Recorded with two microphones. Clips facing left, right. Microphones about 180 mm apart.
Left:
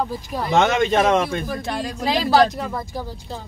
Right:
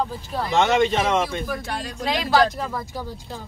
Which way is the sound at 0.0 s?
10° left (ahead or behind).